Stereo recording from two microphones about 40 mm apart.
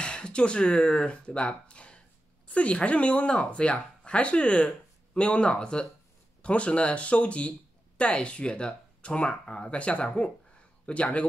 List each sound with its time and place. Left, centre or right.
0.0 s speech: left